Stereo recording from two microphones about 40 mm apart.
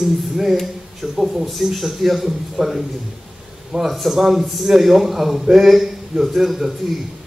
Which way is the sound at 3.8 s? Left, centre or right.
Centre.